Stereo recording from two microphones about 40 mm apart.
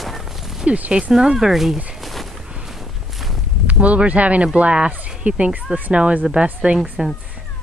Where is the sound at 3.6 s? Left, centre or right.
Right.